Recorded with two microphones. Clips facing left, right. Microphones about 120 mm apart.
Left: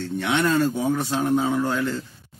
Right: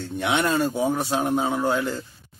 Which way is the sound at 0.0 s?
15° right (ahead or behind).